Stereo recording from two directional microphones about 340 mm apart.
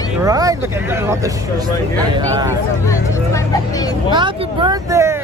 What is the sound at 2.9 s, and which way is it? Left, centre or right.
Speech, centre.